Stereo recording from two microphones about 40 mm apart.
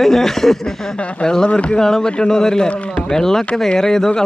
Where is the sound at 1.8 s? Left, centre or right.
Centre.